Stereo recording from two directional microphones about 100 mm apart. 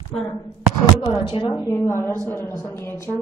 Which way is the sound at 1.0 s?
50° left (ahead or behind).